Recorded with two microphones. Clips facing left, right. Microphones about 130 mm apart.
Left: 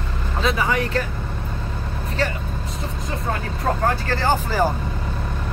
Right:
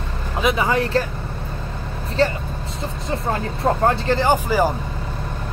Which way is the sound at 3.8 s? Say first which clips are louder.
Right 4 dB; 20° right (ahead or behind).